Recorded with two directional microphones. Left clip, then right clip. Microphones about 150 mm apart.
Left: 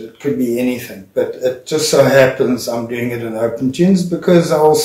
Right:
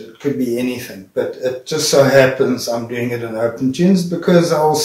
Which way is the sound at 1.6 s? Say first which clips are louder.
Left 1 dB; 25° left (ahead or behind).